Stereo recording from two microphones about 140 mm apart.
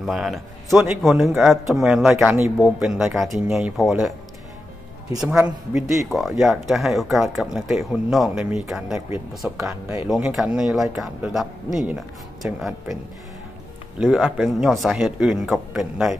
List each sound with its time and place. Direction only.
0.0 s speech: centre (ahead or behind)
5.3 s a man's voice: 15° right (ahead or behind)
5.8 s speech: centre (ahead or behind)
14.0 s speech: centre (ahead or behind)